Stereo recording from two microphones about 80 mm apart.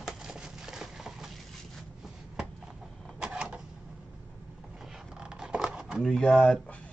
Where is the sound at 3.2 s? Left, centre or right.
Centre.